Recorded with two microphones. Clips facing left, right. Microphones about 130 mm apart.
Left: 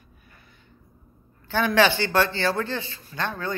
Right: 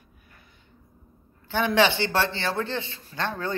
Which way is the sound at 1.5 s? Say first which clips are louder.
Left 1 dB; 20° right (ahead or behind).